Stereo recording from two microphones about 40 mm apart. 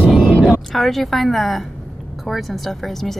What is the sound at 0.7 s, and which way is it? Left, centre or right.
Speech, centre.